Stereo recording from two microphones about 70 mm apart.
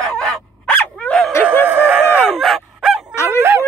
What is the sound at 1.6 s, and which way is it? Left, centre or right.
Chicken, right.